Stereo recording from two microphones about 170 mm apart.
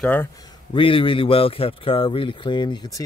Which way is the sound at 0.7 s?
30° left (ahead or behind).